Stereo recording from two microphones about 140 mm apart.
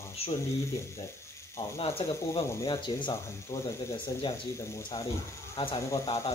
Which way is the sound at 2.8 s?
35° left (ahead or behind).